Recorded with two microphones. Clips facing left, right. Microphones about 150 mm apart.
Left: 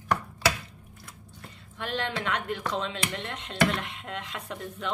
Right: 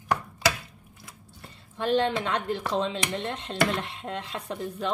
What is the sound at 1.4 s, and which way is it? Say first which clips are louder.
Speech: right 8 dB; 30° right (ahead or behind).